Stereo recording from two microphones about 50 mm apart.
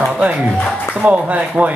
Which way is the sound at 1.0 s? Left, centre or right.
Right.